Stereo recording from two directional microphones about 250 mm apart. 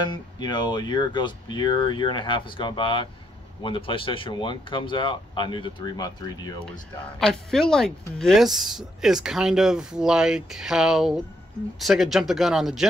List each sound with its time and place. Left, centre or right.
0.0 s speech: centre
7.2 s speech: centre